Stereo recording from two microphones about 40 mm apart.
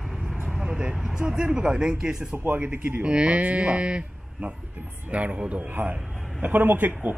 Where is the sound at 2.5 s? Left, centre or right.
Right.